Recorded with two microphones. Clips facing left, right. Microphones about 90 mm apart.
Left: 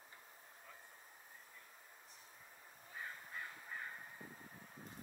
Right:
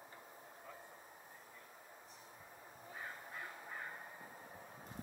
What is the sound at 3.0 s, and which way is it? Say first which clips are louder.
Honk: even; 20° right (ahead or behind).